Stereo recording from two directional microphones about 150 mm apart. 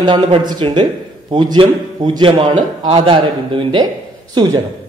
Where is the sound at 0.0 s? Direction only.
30° right (ahead or behind).